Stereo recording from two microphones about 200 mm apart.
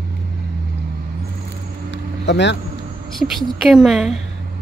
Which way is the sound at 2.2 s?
60° left (ahead or behind).